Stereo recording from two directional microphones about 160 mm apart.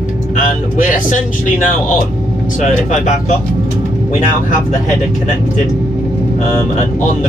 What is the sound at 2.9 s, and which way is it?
Speech, 50° left (ahead or behind).